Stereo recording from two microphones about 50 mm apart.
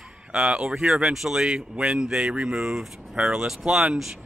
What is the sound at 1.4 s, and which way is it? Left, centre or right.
Speech, centre.